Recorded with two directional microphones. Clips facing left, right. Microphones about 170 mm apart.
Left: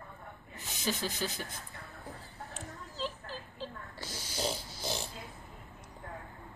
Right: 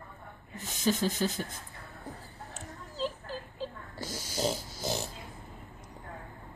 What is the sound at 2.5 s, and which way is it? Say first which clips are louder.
Snake: right 2 dB; 45° right (ahead or behind).